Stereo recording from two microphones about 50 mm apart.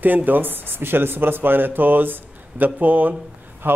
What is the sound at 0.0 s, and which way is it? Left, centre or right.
Speech, right.